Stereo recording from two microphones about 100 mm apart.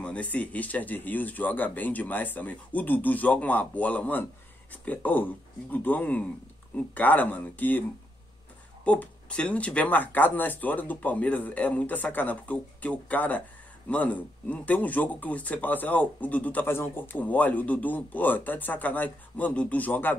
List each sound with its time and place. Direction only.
0.0 s speech: 15° left (ahead or behind)
8.8 s speech: 15° left (ahead or behind)